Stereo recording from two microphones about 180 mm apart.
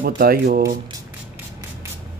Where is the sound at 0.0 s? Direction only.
55° right (ahead or behind).